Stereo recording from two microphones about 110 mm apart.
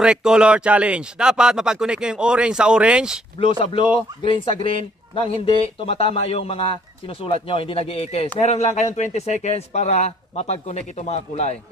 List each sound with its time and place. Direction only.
0.0 s speech: 5° right (ahead or behind)
3.3 s a man's voice: 55° left (ahead or behind)
8.4 s speech: 75° left (ahead or behind)